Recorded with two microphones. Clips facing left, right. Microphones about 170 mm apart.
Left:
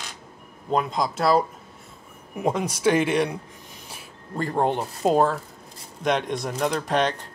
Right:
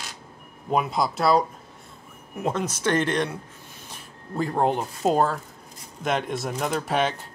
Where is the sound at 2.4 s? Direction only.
10° left (ahead or behind).